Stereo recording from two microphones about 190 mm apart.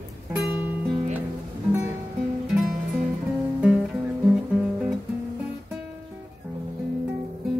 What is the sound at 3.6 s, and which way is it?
Guitar, 5° right (ahead or behind).